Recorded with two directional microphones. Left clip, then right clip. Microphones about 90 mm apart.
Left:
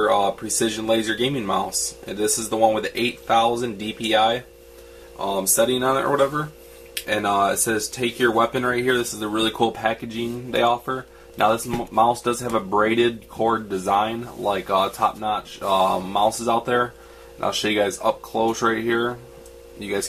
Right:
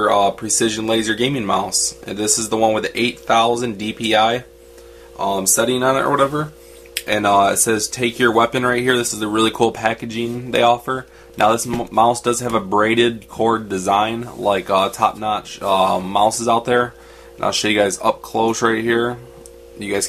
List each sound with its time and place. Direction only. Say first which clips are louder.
0.0 s speech: right 4 dB; 35° right (ahead or behind)